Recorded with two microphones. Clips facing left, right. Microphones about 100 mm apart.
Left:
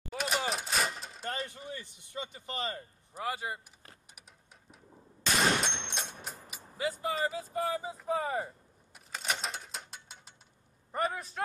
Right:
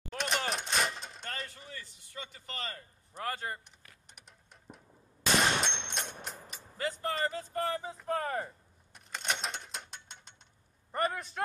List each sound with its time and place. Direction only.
0.1 s a sound: 5° left (ahead or behind)
1.3 s a sound: 20° left (ahead or behind)
1.6 s speech: 20° left (ahead or behind)
3.2 s speech: 10° left (ahead or behind)
4.1 s music: centre (ahead or behind)
5.4 s gunshot: centre (ahead or behind)
7.5 s speech: 5° left (ahead or behind)
8.9 s mechanisms: 5° left (ahead or behind)
10.9 s speech: centre (ahead or behind)